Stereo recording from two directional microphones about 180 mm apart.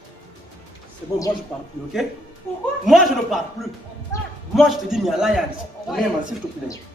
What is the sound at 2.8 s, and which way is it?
A man's voice, centre (ahead or behind).